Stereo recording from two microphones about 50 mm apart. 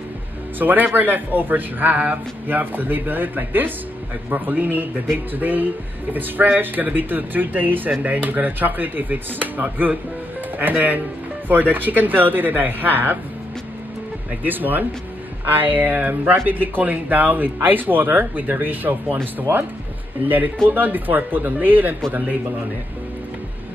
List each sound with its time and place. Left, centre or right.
0.6 s speech: right
14.4 s speech: right
20.2 s speech: right